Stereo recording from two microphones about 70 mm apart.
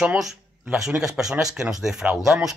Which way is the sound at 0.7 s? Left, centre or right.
Centre.